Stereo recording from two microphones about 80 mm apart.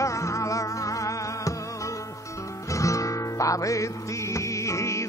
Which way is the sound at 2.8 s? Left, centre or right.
Left.